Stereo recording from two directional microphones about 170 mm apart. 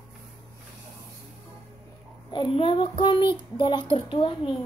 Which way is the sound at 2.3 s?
30° left (ahead or behind).